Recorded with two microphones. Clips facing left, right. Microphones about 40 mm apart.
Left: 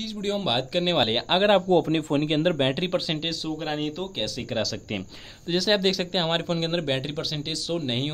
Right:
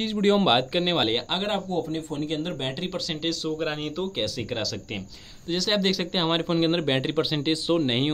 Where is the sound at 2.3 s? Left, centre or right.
Left.